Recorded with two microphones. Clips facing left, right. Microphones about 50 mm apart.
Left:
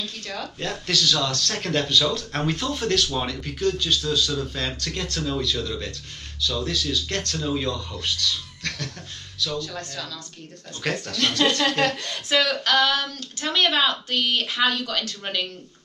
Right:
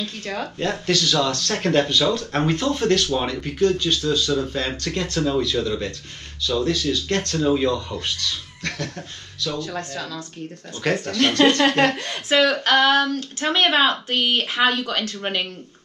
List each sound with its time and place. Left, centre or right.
0.0 s speech: right
0.6 s speech: centre
9.6 s speech: right
11.1 s speech: right